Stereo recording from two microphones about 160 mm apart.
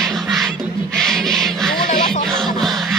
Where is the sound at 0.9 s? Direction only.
5° left (ahead or behind).